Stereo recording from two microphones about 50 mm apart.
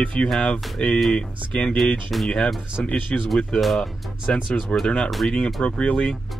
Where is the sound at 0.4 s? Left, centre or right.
Left.